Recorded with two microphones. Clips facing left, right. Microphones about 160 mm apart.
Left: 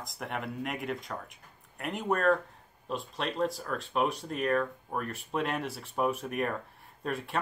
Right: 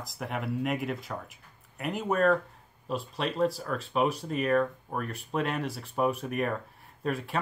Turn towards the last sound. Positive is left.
turn(degrees=0)  # may be behind; listen again after turning